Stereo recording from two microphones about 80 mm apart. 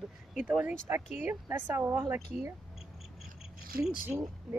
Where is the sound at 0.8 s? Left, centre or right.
Right.